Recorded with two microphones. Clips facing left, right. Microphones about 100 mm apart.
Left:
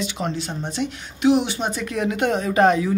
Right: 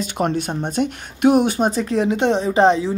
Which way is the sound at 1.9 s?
30° right (ahead or behind).